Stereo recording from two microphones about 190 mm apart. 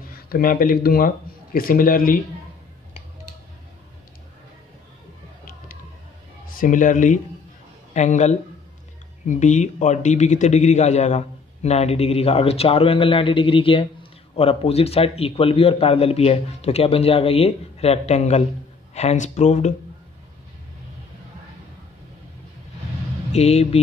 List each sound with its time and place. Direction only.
0.1 s speech: 50° left (ahead or behind)
6.6 s a man's voice: 40° left (ahead or behind)
23.3 s a man's voice: 35° left (ahead or behind)